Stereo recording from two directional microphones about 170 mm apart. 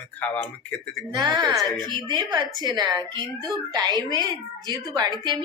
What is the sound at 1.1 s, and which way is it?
A woman's voice, 25° right (ahead or behind).